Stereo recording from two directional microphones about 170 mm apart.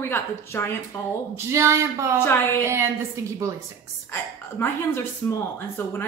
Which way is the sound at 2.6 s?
15° right (ahead or behind).